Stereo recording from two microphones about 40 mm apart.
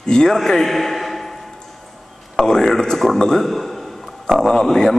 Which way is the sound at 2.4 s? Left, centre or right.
Centre.